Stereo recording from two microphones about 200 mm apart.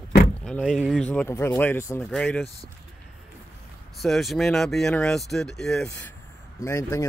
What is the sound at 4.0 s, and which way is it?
Speech, centre (ahead or behind).